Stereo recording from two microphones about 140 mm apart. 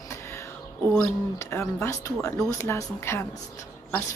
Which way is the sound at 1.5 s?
20° left (ahead or behind).